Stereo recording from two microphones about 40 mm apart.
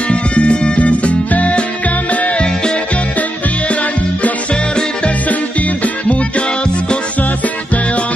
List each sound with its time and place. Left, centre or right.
0.1 s music: left
2.4 s music: left
5.3 s music: left